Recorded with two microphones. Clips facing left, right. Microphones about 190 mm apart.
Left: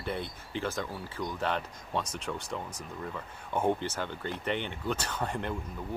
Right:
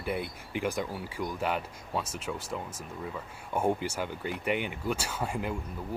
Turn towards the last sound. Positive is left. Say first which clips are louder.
# right 1 dB
turn(degrees=-5)  # may be behind; listen again after turning